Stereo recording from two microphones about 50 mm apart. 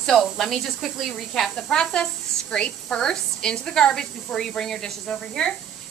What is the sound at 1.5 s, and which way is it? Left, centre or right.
A woman's voice, centre.